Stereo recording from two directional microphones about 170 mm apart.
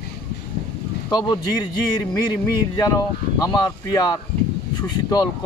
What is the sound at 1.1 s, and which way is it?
Speech, 25° left (ahead or behind).